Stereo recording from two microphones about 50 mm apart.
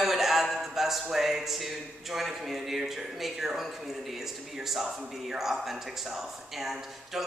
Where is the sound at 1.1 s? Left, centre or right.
Centre.